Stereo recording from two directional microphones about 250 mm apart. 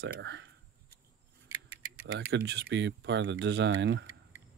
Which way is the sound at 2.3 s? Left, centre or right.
Right.